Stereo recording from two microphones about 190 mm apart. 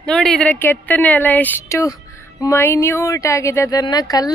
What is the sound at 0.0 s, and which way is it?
Speech, 5° left (ahead or behind).